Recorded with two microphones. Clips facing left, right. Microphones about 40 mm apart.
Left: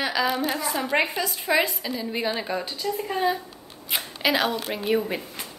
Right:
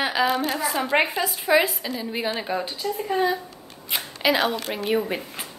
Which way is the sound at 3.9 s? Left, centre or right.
Centre.